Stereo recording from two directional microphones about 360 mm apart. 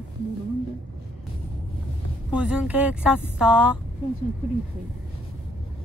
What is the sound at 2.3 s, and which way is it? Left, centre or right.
Speech, centre.